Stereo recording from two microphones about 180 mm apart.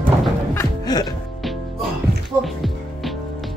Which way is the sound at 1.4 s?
Centre (ahead or behind).